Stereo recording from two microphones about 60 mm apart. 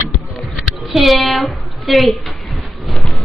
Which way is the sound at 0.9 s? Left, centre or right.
Centre.